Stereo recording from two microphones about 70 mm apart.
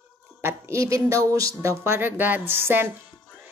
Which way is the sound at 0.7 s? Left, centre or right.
Right.